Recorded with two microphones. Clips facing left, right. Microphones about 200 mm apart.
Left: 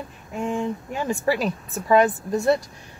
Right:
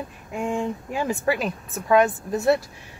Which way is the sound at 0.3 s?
10° right (ahead or behind).